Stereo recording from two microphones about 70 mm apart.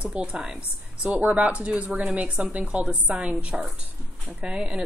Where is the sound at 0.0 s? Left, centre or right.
Centre.